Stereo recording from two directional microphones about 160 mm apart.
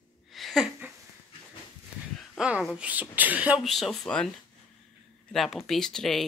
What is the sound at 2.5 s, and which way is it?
Speech, 5° right (ahead or behind).